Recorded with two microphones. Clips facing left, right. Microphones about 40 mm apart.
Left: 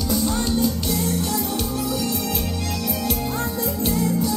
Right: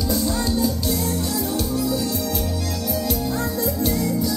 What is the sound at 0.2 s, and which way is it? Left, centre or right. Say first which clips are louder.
Music: even; left.